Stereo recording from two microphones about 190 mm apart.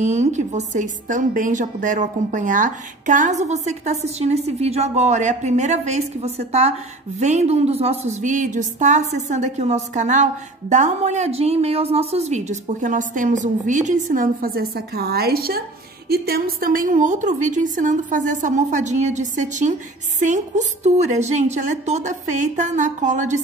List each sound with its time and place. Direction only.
0.0 s a woman's voice: 40° right (ahead or behind)